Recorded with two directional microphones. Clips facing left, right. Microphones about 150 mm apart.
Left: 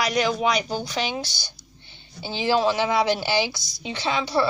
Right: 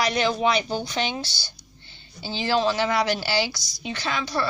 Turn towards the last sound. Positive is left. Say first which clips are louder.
# left 3 dB
turn(degrees=25)  # may be behind; listen again after turning